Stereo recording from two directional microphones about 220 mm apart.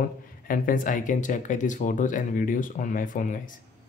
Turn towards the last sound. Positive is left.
turn(degrees=35)  # may be behind; listen again after turning